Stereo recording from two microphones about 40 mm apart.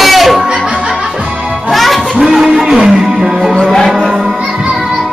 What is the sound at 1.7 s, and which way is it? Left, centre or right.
Music, centre.